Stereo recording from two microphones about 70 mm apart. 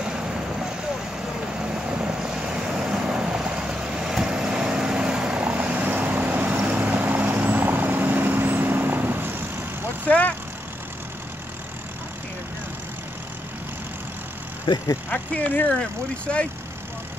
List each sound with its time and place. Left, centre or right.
0.0 s vehicle: centre; by 9.4 s right
10.0 s vehicle: left
14.7 s speech: left
15.0 s speech: left